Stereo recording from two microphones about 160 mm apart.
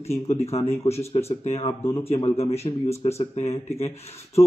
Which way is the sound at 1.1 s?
40° left (ahead or behind).